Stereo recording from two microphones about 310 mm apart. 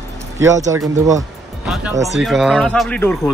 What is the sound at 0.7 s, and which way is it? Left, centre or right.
Speech, centre.